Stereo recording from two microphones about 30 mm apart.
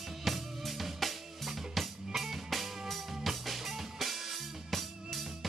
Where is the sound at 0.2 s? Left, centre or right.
Centre.